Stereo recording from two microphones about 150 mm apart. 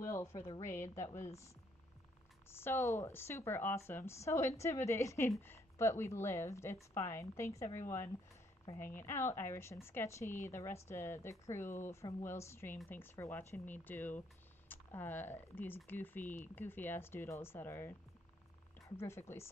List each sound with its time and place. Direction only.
0.0 s a sound: 20° left (ahead or behind)
0.6 s a woman's voice: 15° left (ahead or behind)
2.5 s a woman's voice: 15° left (ahead or behind)